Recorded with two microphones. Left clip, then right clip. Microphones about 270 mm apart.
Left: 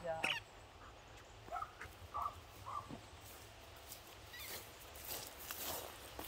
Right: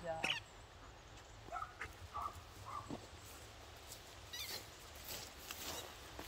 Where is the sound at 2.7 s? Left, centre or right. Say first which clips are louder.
Left 2 dB; left.